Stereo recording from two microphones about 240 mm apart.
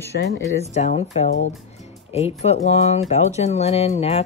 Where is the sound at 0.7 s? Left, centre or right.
Left.